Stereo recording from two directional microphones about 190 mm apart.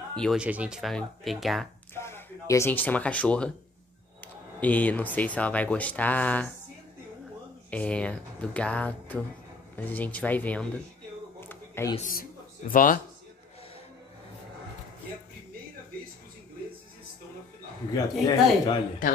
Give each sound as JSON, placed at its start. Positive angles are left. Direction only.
{"t": 0.1, "sound": "speech", "side_deg": 0}
{"t": 2.0, "sound": "speech", "side_deg": 15}
{"t": 7.7, "sound": "speech", "side_deg": 5}
{"t": 11.4, "sound": "a sound", "side_deg": 10}
{"t": 12.1, "sound": "speech", "side_deg": 45}
{"t": 17.9, "sound": "speech", "side_deg": 20}